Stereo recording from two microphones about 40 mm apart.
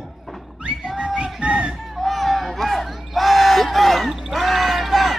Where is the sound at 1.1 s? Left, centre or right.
Right.